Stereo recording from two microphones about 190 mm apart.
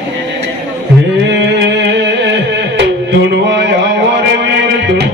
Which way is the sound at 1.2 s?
65° right (ahead or behind).